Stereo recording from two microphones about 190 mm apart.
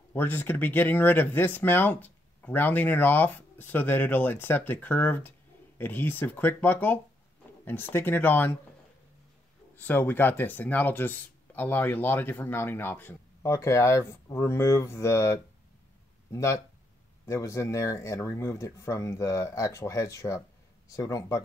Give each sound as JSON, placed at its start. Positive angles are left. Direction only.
{"t": 0.1, "sound": "speech", "side_deg": 10}
{"t": 9.8, "sound": "speech", "side_deg": 10}